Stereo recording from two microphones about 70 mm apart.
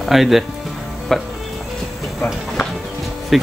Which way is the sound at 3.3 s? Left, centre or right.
Centre.